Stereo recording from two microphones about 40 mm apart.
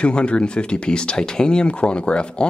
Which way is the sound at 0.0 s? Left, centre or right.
Left.